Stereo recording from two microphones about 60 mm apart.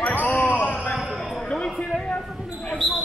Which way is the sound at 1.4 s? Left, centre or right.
Centre.